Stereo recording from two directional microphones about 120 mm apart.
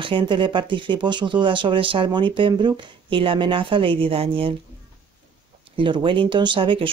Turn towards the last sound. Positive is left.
turn(degrees=-45)  # may be behind; listen again after turning